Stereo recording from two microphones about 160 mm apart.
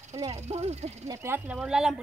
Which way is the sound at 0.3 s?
40° right (ahead or behind).